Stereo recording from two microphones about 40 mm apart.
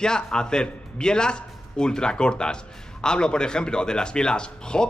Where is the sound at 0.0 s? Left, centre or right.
Centre.